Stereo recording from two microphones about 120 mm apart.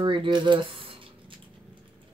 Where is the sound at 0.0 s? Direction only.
45° right (ahead or behind).